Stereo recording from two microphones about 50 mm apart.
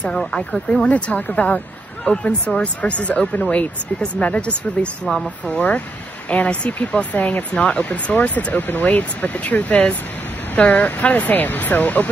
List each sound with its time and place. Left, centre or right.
0.8 s speech: left
5.0 s speech: centre
5.5 s speech: left